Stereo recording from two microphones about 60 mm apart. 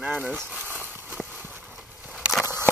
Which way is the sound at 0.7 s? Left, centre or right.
Right.